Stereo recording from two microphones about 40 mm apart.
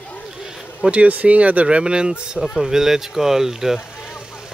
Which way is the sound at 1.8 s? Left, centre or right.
Right.